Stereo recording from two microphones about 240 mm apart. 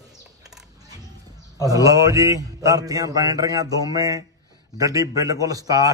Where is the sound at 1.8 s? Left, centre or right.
Centre.